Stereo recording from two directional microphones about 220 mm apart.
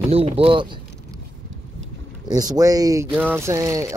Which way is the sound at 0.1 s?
25° right (ahead or behind).